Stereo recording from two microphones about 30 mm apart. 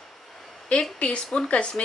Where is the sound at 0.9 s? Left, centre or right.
Left.